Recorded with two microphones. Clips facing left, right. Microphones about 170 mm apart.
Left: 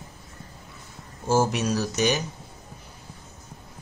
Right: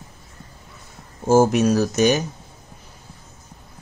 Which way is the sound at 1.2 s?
45° right (ahead or behind).